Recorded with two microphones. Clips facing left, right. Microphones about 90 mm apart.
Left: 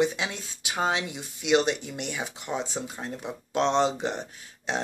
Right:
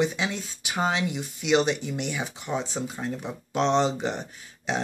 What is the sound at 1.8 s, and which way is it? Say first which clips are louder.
Speech: right 4 dB; 25° right (ahead or behind).